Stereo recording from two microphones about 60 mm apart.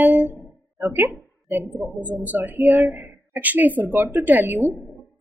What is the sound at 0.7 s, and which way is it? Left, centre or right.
A woman's voice, right.